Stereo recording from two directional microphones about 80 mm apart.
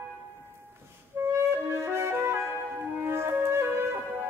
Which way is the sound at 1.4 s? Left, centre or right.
Right.